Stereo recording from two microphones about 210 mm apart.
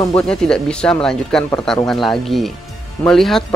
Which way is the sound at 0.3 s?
5° left (ahead or behind).